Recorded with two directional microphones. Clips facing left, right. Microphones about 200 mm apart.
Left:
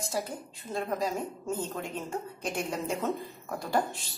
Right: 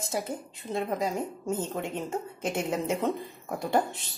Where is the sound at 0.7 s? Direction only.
20° right (ahead or behind).